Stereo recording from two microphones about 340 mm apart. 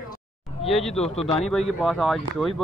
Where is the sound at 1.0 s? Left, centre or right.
Centre.